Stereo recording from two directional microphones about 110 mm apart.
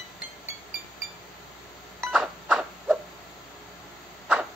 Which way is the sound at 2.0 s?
5° right (ahead or behind).